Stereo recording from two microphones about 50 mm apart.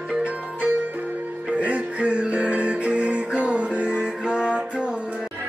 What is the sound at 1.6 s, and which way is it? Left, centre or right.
Music, right.